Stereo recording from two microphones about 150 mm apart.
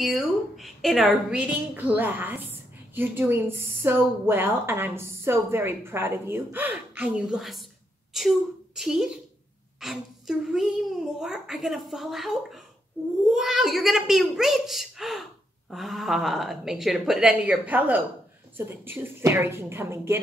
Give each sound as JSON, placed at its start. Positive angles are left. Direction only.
{"t": 0.0, "sound": "a woman's voice", "side_deg": 0}